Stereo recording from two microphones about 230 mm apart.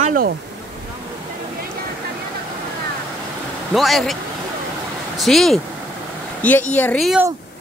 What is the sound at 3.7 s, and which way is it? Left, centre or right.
Speech, centre.